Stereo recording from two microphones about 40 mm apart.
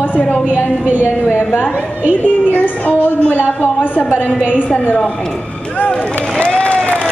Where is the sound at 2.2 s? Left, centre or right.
Left.